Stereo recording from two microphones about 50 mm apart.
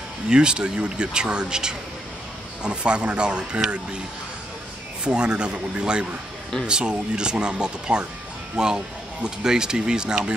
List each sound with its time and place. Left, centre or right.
0.3 s speech: centre
5.0 s speech: centre